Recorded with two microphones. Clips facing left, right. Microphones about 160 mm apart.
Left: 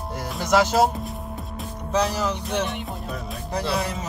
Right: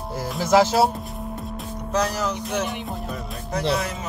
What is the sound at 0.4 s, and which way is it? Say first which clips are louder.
Speech: right 2 dB; 5° right (ahead or behind).